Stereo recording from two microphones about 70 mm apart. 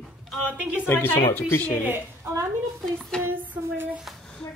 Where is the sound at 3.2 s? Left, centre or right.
Right.